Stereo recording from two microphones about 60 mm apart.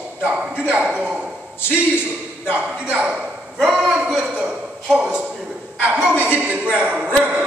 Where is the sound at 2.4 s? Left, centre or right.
Centre.